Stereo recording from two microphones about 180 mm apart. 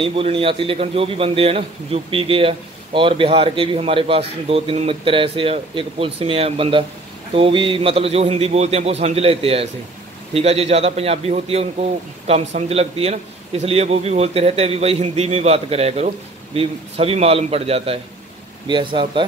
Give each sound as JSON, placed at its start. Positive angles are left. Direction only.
{"t": 0.0, "sound": "a man's voice", "side_deg": -30}